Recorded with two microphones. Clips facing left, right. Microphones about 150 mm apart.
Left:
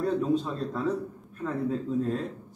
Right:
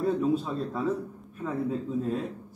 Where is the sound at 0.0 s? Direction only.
5° right (ahead or behind).